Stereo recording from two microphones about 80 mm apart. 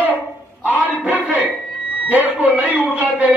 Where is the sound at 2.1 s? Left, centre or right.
Centre.